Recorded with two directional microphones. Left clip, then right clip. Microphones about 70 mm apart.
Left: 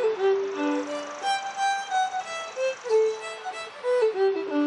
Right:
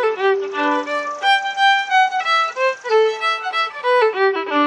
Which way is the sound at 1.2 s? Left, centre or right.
Right.